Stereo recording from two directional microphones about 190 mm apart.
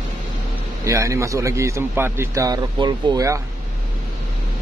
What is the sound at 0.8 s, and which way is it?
Speech, 15° right (ahead or behind).